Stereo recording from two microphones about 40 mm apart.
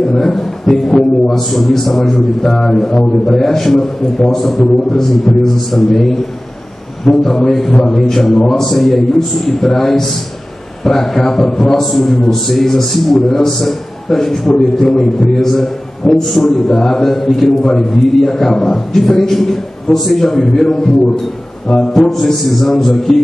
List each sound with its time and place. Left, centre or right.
0.1 s a man's voice: centre
2.7 s a man's voice: centre